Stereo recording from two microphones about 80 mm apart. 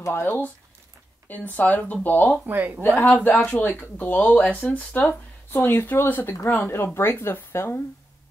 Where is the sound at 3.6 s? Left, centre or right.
Left.